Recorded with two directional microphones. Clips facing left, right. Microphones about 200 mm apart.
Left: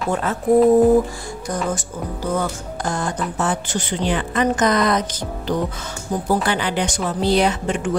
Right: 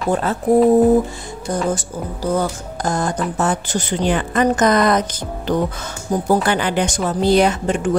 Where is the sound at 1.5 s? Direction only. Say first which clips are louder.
Right 4 dB; 30° right (ahead or behind).